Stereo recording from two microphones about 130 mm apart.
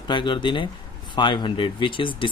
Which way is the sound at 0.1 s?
35° left (ahead or behind).